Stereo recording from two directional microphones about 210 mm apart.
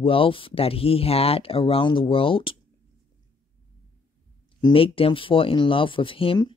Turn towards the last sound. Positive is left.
turn(degrees=25)  # may be behind; listen again after turning